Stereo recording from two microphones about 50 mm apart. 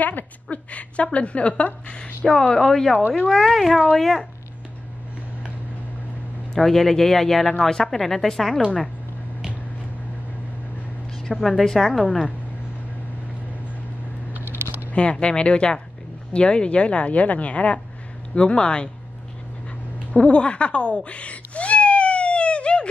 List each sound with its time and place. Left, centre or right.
0.0 s a woman's voice: left; by 4.3 s centre
6.5 s speech: centre
11.3 s a woman's voice: centre
14.3 s a sound: right
14.9 s a woman's voice: left
20.1 s cat: left